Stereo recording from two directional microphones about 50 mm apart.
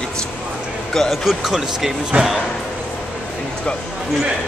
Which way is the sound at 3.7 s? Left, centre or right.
Centre.